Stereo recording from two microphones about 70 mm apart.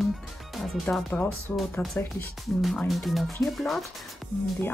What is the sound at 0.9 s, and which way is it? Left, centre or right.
Speech, centre.